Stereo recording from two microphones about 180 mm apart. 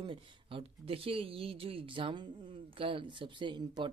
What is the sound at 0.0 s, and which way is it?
Speech, 30° right (ahead or behind).